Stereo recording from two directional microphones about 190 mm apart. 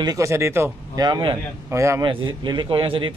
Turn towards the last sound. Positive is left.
turn(degrees=-25)  # may be behind; listen again after turning